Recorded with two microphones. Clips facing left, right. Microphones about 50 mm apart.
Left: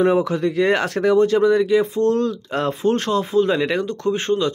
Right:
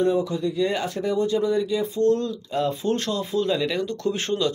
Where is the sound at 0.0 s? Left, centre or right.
Left.